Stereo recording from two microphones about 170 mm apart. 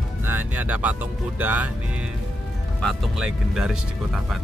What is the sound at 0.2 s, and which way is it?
Speech, 10° right (ahead or behind).